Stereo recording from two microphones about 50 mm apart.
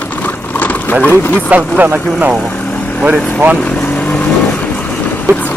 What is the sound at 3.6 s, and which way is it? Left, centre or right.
Vehicle, left.